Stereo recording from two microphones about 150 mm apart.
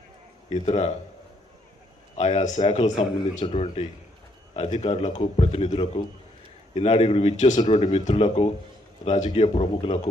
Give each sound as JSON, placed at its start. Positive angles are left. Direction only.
{"t": 0.5, "sound": "speech", "side_deg": 45}
{"t": 2.1, "sound": "speech", "side_deg": 45}